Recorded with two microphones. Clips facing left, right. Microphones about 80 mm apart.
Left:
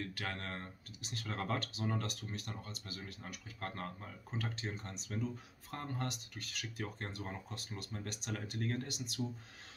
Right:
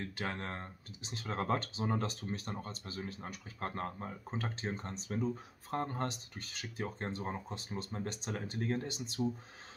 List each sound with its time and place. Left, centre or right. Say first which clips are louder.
0.0 s speech: right 3 dB; right